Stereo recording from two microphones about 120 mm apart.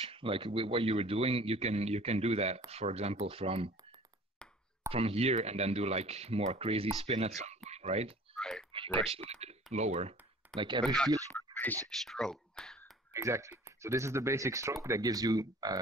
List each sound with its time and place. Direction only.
0.0 s speech: 50° right (ahead or behind)
4.4 s chop: 5° left (ahead or behind)
4.8 s speech: 55° right (ahead or behind)
8.4 s clicking: 5° left (ahead or behind)
8.7 s a sound: 45° right (ahead or behind)
9.1 s speech: 60° right (ahead or behind)
10.6 s speech: 40° right (ahead or behind)
11.1 s a sound: 30° right (ahead or behind)
11.9 s speech: 5° left (ahead or behind)
13.1 s speech: 25° right (ahead or behind)